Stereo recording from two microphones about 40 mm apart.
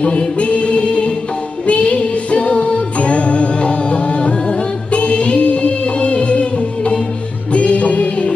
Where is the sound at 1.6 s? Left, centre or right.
Left.